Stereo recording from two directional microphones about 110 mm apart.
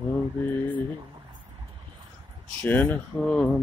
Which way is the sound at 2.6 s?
15° left (ahead or behind).